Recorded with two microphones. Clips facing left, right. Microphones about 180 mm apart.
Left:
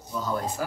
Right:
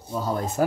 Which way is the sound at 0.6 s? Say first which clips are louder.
Right 9 dB; 50° right (ahead or behind).